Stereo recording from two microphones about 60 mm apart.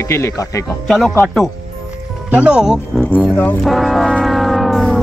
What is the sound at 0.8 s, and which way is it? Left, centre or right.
Speech, centre.